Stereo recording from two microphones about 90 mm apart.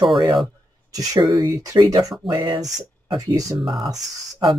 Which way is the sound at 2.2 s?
55° right (ahead or behind).